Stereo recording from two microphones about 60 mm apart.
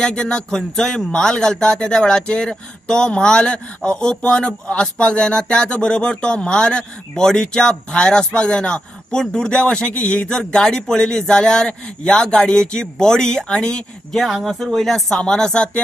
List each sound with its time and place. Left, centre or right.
0.0 s speech: centre